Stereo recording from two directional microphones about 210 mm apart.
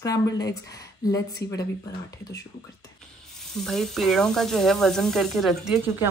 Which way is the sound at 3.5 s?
Centre (ahead or behind).